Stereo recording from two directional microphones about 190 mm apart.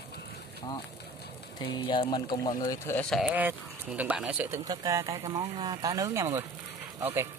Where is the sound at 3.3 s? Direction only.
10° right (ahead or behind).